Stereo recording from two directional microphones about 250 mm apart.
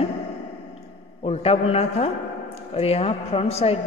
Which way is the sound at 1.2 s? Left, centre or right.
Left.